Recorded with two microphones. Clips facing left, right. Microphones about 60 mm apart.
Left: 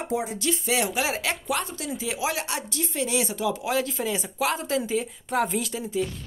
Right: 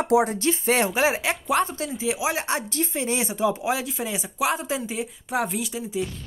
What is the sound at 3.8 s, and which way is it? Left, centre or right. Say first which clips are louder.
Speech: left 3 dB; centre.